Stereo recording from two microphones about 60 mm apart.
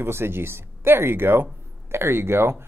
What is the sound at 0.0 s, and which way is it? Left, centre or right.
Speech, right.